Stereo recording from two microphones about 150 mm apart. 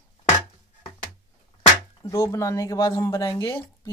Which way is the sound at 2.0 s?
20° left (ahead or behind).